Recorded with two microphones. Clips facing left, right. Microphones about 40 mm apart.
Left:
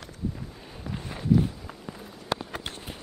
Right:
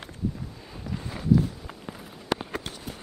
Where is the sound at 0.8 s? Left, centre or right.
Centre.